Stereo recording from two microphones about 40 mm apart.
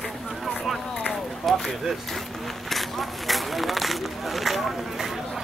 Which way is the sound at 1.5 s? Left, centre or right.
Centre.